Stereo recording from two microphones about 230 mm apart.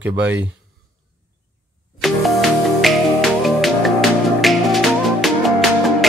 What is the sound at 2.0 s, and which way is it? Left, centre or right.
Music, centre.